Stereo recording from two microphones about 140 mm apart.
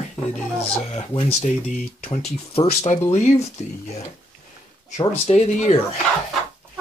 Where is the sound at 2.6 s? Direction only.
55° left (ahead or behind).